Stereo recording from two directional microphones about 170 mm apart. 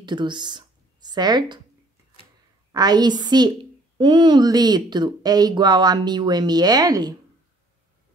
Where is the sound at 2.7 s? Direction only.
25° right (ahead or behind).